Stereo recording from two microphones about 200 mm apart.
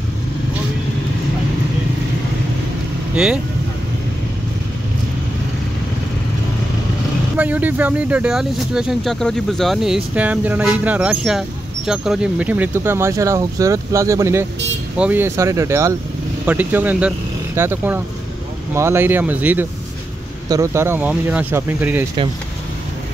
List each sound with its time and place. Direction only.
7.3 s speech: 10° right (ahead or behind)